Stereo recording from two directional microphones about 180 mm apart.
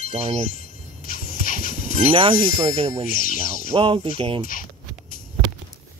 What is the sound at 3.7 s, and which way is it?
Speech, 30° right (ahead or behind).